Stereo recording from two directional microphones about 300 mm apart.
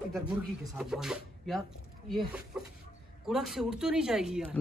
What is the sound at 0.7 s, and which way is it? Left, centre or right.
Speech, centre.